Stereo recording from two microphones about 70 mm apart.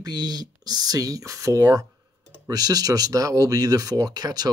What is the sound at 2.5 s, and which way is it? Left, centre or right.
Speech, right.